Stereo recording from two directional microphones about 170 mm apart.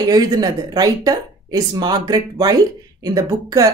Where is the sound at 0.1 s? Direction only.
20° right (ahead or behind).